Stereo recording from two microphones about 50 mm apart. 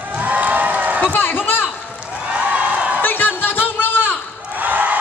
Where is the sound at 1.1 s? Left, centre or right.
Left.